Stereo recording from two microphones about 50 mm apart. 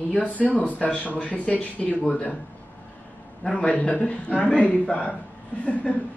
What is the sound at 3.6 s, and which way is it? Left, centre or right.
A man's voice, left.